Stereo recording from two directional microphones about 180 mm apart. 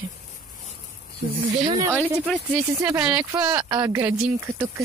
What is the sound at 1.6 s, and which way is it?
Speech, 25° right (ahead or behind).